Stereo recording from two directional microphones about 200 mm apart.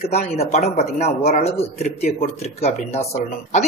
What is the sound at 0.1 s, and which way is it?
A woman's voice, 30° left (ahead or behind).